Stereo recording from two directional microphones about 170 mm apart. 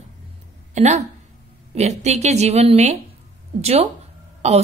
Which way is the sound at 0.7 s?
40° right (ahead or behind).